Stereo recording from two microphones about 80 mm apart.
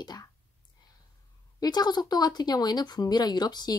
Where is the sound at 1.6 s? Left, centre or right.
Left.